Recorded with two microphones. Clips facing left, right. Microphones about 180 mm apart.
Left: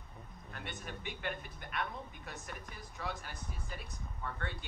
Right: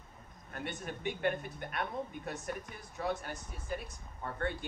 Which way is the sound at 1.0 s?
50° right (ahead or behind).